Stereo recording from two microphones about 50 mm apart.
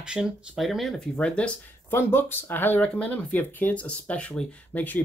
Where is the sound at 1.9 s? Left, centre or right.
Left.